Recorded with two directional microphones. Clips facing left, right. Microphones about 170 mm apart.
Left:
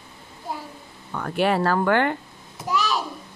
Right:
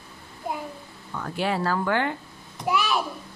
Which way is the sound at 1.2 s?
60° left (ahead or behind).